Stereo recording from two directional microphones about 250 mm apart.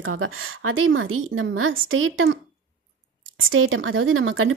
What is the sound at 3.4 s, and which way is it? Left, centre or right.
A woman's voice, right.